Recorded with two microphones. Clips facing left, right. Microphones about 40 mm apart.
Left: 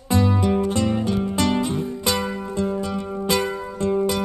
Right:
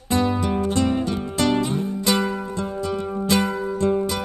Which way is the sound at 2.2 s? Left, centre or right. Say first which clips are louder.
Right 2 dB; centre.